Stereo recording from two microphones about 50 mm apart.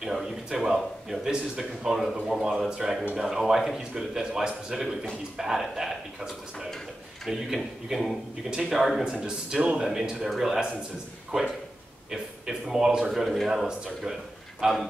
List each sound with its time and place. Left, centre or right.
0.0 s a sound: centre
0.7 s a man's voice: centre
9.7 s a man's voice: centre
12.1 s a man's voice: centre